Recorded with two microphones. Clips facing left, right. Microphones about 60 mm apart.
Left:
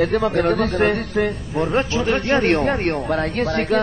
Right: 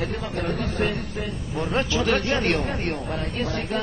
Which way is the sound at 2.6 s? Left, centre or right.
Left.